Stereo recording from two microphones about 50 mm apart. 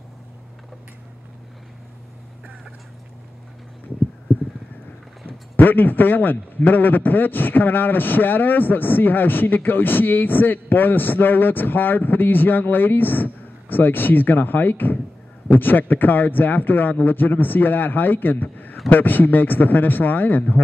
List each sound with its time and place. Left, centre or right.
5.6 s a man's voice: left